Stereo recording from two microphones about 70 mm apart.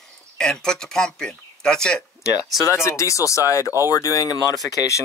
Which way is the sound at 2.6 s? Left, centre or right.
Left.